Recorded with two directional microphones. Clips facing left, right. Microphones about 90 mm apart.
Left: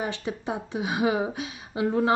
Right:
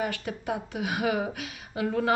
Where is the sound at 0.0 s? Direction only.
25° left (ahead or behind).